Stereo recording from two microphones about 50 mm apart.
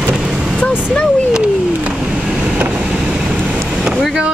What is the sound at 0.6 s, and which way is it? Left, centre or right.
Vehicle, centre.